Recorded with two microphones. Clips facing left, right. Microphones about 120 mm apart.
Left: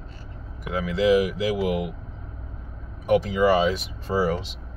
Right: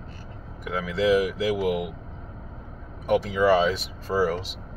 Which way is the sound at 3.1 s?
10° left (ahead or behind).